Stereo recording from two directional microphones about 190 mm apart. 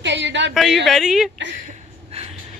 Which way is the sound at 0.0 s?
70° right (ahead or behind).